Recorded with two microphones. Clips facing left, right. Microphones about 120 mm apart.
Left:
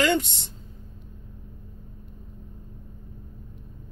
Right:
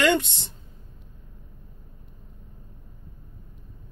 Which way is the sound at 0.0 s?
70° right (ahead or behind).